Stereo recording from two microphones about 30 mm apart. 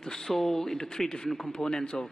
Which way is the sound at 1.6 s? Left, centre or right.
Left.